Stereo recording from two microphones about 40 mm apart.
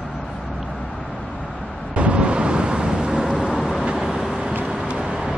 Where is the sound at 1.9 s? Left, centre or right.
Right.